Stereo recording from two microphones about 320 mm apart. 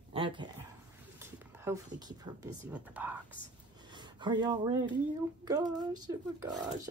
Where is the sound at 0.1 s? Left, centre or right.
Centre.